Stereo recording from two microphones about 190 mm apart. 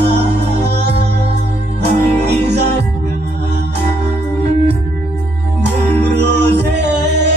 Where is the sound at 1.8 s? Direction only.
60° right (ahead or behind).